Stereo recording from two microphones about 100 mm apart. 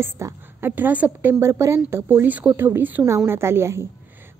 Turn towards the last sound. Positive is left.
turn(degrees=-25)  # may be behind; listen again after turning